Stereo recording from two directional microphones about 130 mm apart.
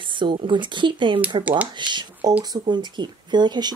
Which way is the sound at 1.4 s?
10° right (ahead or behind).